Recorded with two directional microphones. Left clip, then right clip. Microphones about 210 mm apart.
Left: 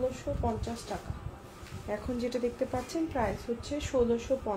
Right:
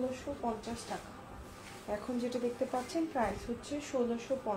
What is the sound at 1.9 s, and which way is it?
Speech, 30° left (ahead or behind).